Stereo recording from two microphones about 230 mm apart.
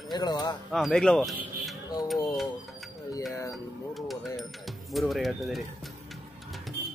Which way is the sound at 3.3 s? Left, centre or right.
Centre.